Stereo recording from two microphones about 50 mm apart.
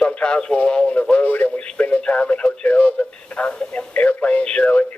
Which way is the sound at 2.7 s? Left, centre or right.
Left.